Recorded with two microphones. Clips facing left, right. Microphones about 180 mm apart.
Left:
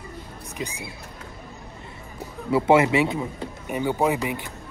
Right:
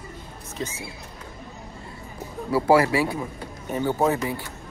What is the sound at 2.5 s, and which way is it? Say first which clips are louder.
Speech: left 1 dB; 25° left (ahead or behind).